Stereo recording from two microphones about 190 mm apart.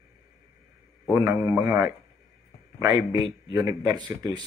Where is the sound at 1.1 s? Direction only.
20° right (ahead or behind).